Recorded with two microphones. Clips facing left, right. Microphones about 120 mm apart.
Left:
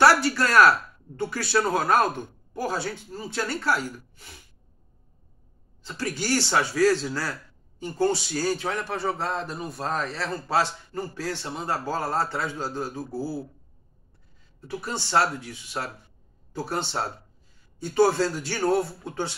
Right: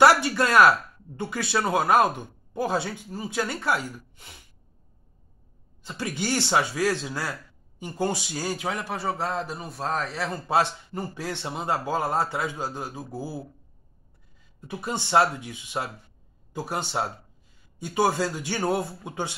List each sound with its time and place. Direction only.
0.0 s speech: 20° right (ahead or behind)
5.9 s a man's voice: 20° right (ahead or behind); by 10.1 s centre (ahead or behind)
10.1 s speech: 15° right (ahead or behind)
14.6 s speech: 20° right (ahead or behind)